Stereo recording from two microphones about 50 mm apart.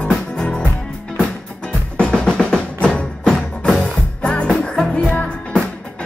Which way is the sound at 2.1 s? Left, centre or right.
Centre.